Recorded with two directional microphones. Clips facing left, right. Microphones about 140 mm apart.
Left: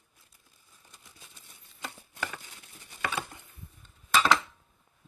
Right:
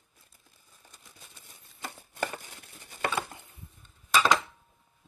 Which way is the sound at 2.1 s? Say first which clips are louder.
Right 6 dB; 45° right (ahead or behind).